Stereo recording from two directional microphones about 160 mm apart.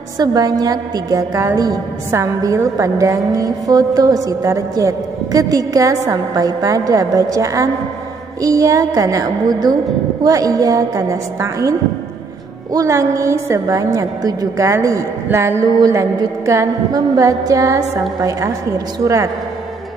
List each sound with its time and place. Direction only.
0.2 s a woman's voice: 25° right (ahead or behind)
12.7 s a woman's voice: 20° right (ahead or behind)